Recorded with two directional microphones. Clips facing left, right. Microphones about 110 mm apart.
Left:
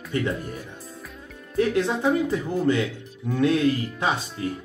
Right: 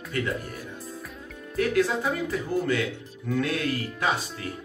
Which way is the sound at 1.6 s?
25° left (ahead or behind).